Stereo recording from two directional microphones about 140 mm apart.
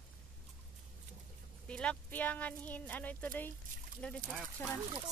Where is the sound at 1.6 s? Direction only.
10° left (ahead or behind).